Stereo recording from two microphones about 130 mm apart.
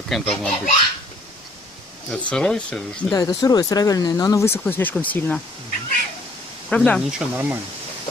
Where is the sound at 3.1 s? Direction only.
30° left (ahead or behind); by 5.4 s 10° left (ahead or behind).